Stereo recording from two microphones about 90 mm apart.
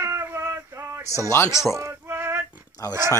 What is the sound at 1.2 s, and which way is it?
Speech, 30° left (ahead or behind).